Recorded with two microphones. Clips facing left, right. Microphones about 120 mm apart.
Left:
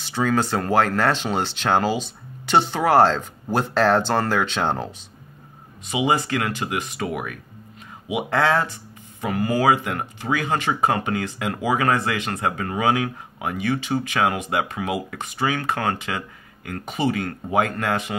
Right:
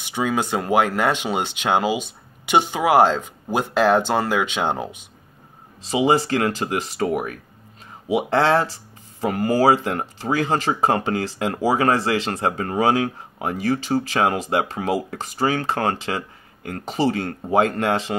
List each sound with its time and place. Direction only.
0.0 s speech: 10° right (ahead or behind)
5.9 s speech: 35° right (ahead or behind)